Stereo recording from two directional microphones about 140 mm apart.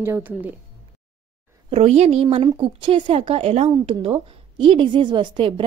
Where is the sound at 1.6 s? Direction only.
45° right (ahead or behind).